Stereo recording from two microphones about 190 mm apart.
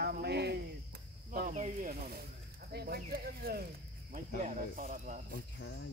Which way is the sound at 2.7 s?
55° right (ahead or behind).